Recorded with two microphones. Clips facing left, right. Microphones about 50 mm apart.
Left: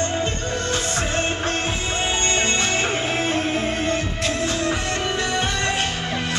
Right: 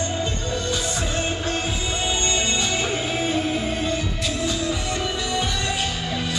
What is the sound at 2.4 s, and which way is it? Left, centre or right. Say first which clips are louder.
Music: left 2 dB; left.